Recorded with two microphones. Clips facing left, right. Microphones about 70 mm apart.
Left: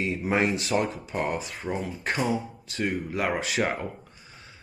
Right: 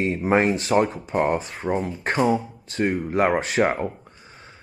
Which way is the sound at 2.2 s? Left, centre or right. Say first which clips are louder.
Right 7 dB; centre.